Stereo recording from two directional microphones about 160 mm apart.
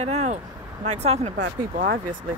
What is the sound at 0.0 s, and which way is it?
Speech, 45° right (ahead or behind).